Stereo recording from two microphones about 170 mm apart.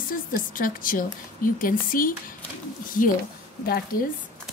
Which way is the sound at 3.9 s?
60° left (ahead or behind).